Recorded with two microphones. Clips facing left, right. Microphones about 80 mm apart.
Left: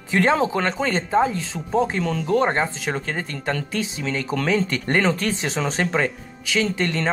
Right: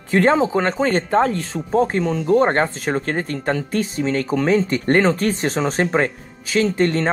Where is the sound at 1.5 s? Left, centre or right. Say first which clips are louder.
Right 3 dB; centre.